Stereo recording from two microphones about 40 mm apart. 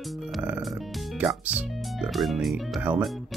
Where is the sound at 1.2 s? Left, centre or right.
Right.